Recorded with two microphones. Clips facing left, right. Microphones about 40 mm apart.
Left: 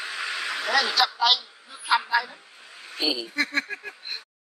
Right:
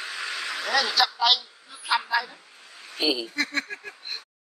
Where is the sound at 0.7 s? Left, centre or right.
Centre.